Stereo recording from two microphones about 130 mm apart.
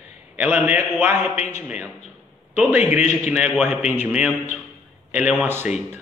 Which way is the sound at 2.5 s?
10° right (ahead or behind).